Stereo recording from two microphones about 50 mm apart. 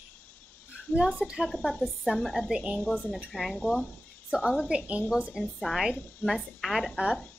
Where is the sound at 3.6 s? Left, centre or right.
Left.